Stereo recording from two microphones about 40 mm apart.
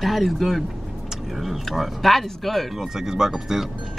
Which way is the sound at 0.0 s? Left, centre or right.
Centre.